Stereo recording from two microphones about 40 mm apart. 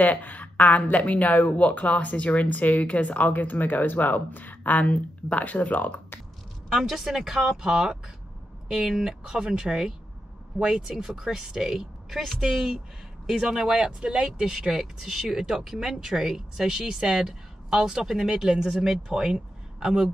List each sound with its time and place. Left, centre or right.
0.0 s a sound: left
0.9 s speech: left
6.7 s speech: centre